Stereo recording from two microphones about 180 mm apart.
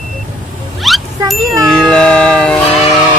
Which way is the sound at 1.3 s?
5° left (ahead or behind).